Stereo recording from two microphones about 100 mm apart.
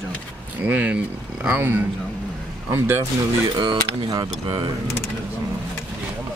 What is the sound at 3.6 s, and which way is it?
Speech, 55° right (ahead or behind).